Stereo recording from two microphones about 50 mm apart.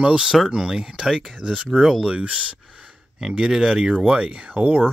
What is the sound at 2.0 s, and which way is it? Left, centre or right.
Speech, right.